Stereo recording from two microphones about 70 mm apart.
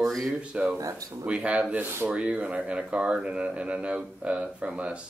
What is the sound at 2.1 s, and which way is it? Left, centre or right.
Speech, centre.